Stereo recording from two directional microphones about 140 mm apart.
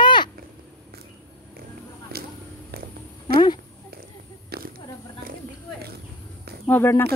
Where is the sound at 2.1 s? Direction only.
90° right.